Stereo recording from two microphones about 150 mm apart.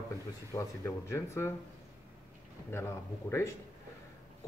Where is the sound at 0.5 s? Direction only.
20° left (ahead or behind).